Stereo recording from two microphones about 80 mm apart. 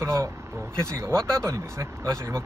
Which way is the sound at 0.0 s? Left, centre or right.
Right.